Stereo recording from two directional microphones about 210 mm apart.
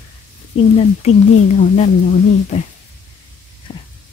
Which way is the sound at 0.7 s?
30° left (ahead or behind).